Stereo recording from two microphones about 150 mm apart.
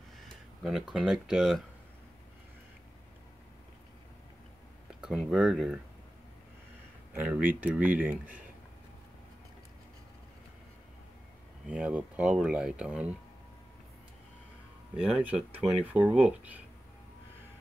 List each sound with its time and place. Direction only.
0.2 s speech: centre (ahead or behind)
5.0 s speech: 5° right (ahead or behind)
7.2 s speech: 10° right (ahead or behind)
11.6 s speech: 5° right (ahead or behind)
15.0 s speech: 10° right (ahead or behind)